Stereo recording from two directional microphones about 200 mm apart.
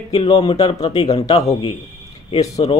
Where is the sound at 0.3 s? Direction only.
20° left (ahead or behind).